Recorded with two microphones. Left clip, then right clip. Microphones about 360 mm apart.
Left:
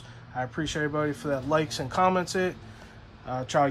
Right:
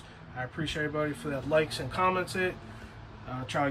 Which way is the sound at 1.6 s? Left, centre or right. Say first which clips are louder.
Even; centre.